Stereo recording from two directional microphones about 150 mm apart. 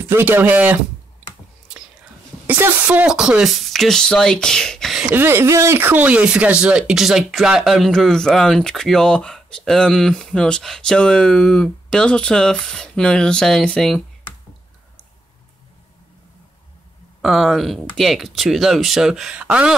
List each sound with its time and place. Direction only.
0.0 s speech: 15° right (ahead or behind)
2.4 s speech: 10° right (ahead or behind); by 14.0 s 5° left (ahead or behind)
17.2 s speech: centre (ahead or behind)